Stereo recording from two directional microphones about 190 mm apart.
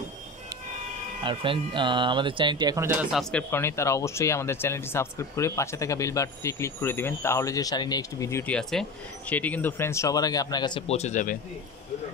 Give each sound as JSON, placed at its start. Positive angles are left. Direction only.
{"t": 1.2, "sound": "speech", "side_deg": -25}
{"t": 10.9, "sound": "speech", "side_deg": 35}